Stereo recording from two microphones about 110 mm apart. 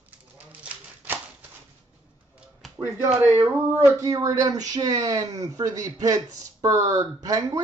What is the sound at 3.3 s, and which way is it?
Speech, 25° right (ahead or behind).